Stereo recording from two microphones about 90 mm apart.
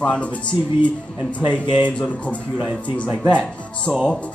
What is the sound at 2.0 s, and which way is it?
Speech, 15° left (ahead or behind).